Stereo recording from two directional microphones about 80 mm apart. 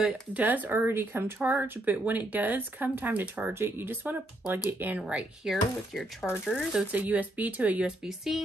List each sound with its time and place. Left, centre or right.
0.3 s speech: right
5.0 s speech: centre
6.9 s speech: centre
8.0 s speech: centre